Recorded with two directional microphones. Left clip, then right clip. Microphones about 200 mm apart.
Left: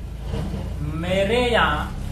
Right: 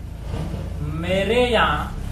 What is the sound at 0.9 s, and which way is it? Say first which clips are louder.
Speech: right 1 dB; 5° right (ahead or behind).